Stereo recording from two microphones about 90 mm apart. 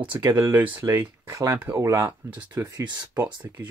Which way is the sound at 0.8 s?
40° right (ahead or behind).